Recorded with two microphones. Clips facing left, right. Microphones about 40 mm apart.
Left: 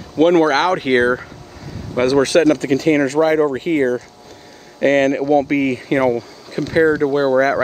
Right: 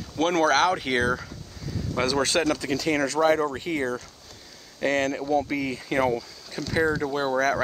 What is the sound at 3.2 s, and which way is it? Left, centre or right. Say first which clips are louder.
Speech: left 7 dB; left.